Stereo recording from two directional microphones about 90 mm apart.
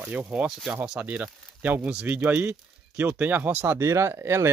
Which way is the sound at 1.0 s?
20° right (ahead or behind).